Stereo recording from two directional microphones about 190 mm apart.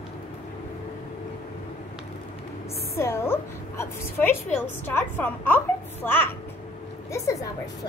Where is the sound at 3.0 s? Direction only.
15° left (ahead or behind).